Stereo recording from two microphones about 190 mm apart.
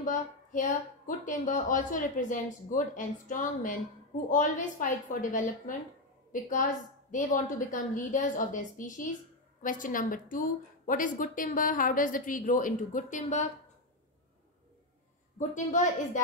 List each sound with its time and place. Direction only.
0.0 s a woman's voice: 45° left (ahead or behind)
15.3 s a woman's voice: 40° left (ahead or behind)